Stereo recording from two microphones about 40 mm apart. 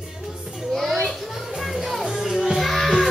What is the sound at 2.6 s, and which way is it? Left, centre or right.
Music, centre.